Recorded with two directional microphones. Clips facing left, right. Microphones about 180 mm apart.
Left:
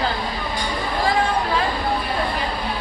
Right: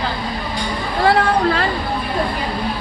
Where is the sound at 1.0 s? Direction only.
65° right (ahead or behind).